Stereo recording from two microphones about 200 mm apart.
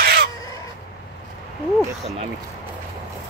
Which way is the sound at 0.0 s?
50° right (ahead or behind).